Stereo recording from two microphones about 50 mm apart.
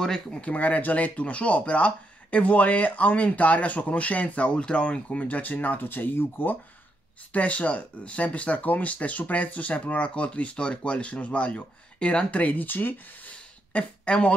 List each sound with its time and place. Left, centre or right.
0.0 s speech: centre; by 6.6 s left
7.3 s speech: left
13.3 s a sound: left